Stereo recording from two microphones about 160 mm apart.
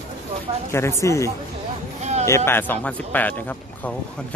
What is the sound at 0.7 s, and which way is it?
Speech, 15° left (ahead or behind).